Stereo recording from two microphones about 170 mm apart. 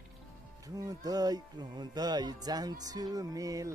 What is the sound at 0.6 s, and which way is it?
Speech, 20° right (ahead or behind).